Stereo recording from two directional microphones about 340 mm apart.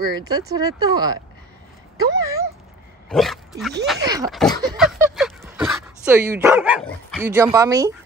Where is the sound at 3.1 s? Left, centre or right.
Centre.